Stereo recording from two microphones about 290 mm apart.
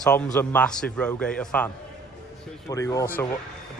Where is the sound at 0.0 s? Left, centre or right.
Centre.